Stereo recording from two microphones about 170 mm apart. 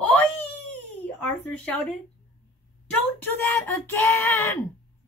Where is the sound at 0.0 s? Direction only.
5° left (ahead or behind).